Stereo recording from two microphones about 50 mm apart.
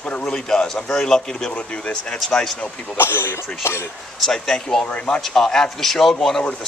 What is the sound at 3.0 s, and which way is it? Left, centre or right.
Speech, left.